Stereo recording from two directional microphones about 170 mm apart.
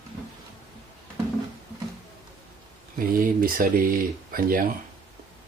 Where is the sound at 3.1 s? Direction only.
55° right (ahead or behind).